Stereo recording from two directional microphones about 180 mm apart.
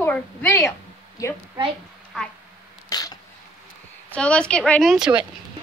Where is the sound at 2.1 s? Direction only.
5° left (ahead or behind).